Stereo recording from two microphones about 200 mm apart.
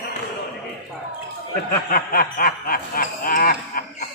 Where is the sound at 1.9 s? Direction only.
45° left (ahead or behind).